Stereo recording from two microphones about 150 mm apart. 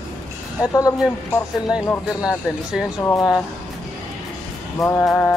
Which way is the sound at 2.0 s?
5° right (ahead or behind).